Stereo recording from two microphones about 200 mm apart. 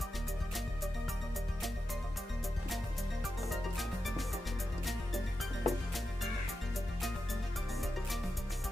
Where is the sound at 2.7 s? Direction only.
Centre (ahead or behind).